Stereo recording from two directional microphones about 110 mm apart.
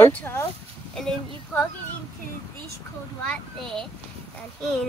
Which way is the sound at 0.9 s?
5° left (ahead or behind).